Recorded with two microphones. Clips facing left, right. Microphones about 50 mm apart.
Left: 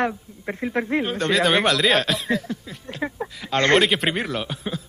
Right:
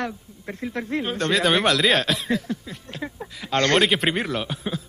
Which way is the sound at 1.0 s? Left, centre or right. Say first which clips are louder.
Right 1 dB; centre.